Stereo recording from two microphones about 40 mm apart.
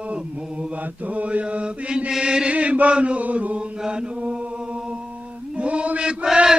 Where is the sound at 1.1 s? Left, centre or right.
Right.